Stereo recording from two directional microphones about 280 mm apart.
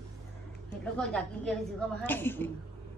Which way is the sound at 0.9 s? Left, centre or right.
Centre.